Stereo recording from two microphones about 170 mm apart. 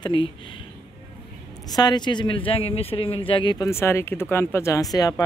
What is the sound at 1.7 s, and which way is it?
A man's voice, 25° left (ahead or behind).